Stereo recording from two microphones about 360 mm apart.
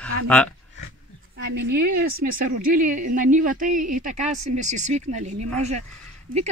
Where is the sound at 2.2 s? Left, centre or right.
Right.